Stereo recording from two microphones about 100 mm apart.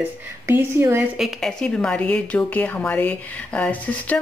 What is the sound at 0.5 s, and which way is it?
Speech, 25° right (ahead or behind).